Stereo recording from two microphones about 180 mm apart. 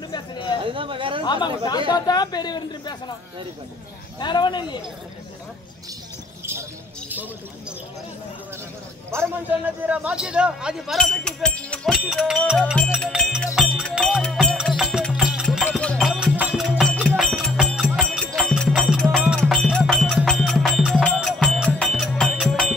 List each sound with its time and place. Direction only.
0.1 s a sound: 25° left (ahead or behind)
0.7 s speech: 30° right (ahead or behind)
1.2 s speech: 25° left (ahead or behind)
4.2 s speech: 25° left (ahead or behind)
9.1 s a man's voice: 15° right (ahead or behind)
13.4 s music: centre (ahead or behind)